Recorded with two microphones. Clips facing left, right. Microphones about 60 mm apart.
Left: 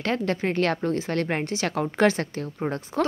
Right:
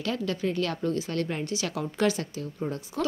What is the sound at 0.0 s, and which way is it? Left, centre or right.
A woman's voice, left.